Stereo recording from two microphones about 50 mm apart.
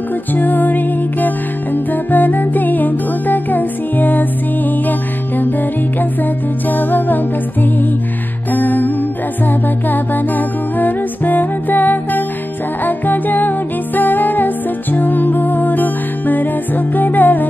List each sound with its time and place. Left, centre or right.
0.3 s music: left
6.7 s music: left